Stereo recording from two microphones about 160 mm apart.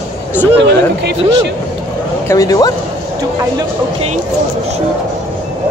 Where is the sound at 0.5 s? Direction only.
90° right.